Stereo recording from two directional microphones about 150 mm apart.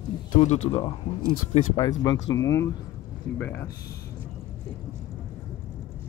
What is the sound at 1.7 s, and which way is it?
Speech, 25° left (ahead or behind).